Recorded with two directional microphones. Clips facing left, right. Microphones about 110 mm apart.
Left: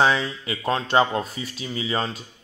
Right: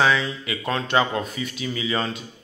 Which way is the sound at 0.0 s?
35° left (ahead or behind).